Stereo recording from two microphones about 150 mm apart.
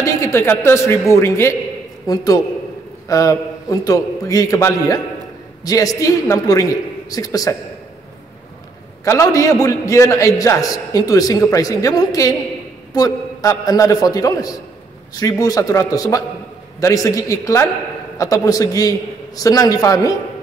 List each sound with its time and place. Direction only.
0.0 s a man's voice: 20° left (ahead or behind)
9.0 s a man's voice: 20° left (ahead or behind)